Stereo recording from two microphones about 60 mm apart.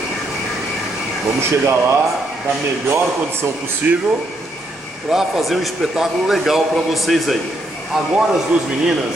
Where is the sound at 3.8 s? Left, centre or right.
Right.